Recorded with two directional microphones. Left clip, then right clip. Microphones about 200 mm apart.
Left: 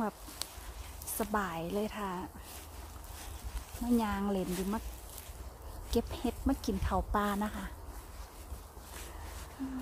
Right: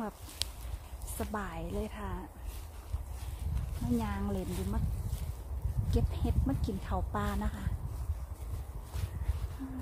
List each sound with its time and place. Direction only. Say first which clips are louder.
0.4 s a sound: right 5 dB; 15° left (ahead or behind)
1.1 s speech: left 4 dB; 25° left (ahead or behind)
3.9 s speech: left 4 dB; 25° left (ahead or behind)
5.9 s speech: left 4 dB; 25° left (ahead or behind)